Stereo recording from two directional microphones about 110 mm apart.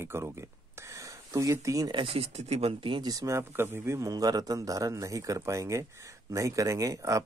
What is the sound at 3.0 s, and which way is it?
Speech, 30° right (ahead or behind).